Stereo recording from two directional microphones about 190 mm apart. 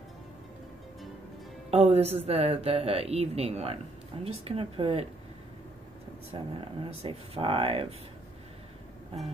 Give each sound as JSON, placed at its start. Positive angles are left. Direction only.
{"t": 1.7, "sound": "speech", "side_deg": -35}
{"t": 6.3, "sound": "speech", "side_deg": -25}
{"t": 9.1, "sound": "speech", "side_deg": -30}